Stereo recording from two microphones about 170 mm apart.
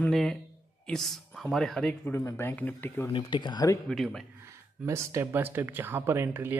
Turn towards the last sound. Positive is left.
turn(degrees=-10)  # may be behind; listen again after turning